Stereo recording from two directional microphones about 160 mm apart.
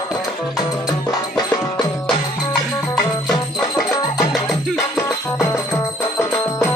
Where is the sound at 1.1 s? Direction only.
25° left (ahead or behind).